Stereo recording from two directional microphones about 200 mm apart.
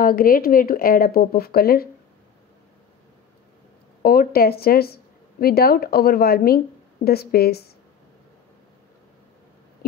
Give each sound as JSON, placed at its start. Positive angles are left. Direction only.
{"t": 0.0, "sound": "a woman's voice", "side_deg": 45}
{"t": 4.0, "sound": "a woman's voice", "side_deg": 50}